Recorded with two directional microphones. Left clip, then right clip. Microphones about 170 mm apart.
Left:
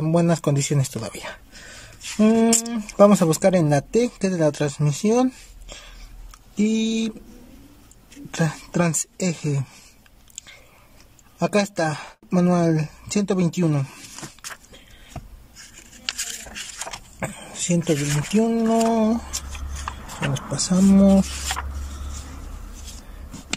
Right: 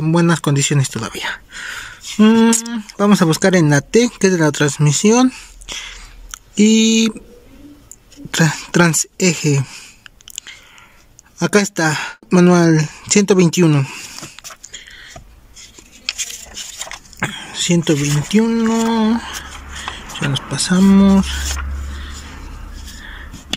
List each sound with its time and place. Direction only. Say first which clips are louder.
0.0 s speech: right 4 dB; 10° left (ahead or behind)
8.4 s speech: right 9 dB; centre (ahead or behind)
10.3 s a sound: right 9 dB; centre (ahead or behind)
11.3 s speech: right 5 dB; centre (ahead or behind)
17.2 s speech: right 10 dB; 5° left (ahead or behind)
20.3 s speech: right 7 dB; 10° left (ahead or behind)